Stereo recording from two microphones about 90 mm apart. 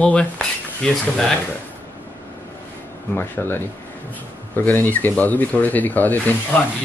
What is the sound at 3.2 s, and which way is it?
Speech, 25° left (ahead or behind).